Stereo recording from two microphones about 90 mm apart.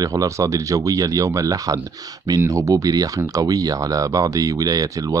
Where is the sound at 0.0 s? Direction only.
40° right (ahead or behind).